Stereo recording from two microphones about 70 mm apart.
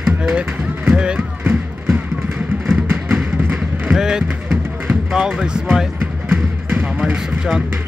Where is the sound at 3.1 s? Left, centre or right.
Centre.